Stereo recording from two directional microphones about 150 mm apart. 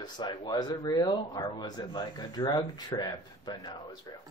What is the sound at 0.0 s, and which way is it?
Speech, 30° left (ahead or behind).